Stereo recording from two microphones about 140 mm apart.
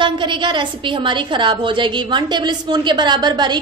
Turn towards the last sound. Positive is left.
turn(degrees=-30)  # may be behind; listen again after turning